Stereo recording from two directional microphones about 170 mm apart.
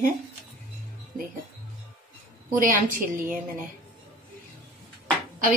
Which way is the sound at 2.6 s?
55° right (ahead or behind).